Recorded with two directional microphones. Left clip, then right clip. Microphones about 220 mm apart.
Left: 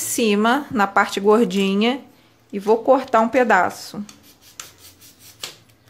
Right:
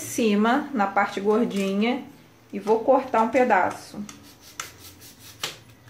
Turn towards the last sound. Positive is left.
turn(degrees=0)  # may be behind; listen again after turning